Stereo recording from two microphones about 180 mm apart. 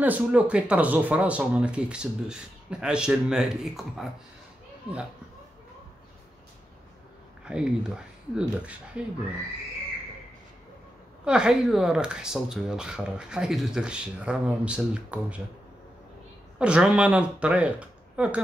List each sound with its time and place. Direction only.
0.0 s speech: 10° right (ahead or behind)
7.4 s speech: 5° right (ahead or behind)
11.2 s speech: 5° right (ahead or behind)
16.5 s speech: 5° right (ahead or behind)